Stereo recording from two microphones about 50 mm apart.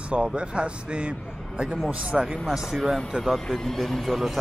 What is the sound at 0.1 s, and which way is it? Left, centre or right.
A man's voice, right.